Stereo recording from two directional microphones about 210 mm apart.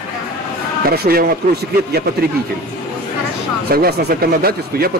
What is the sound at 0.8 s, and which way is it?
Speech, 45° right (ahead or behind).